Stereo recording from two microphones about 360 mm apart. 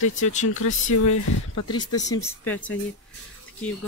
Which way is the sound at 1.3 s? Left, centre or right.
Left.